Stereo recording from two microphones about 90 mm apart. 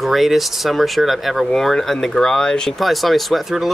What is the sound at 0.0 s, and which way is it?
Speech, centre (ahead or behind).